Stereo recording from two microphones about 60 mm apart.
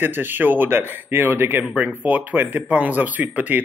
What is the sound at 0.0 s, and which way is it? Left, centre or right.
Speech, right.